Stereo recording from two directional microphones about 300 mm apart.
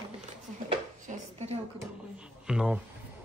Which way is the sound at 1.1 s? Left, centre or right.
Right.